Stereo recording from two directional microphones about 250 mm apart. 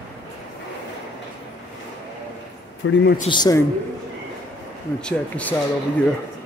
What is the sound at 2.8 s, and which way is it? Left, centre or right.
Speech, left.